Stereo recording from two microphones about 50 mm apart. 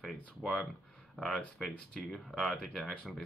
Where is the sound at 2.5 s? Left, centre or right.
Centre.